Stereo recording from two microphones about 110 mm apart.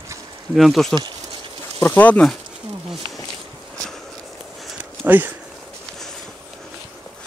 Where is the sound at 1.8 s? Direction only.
15° left (ahead or behind).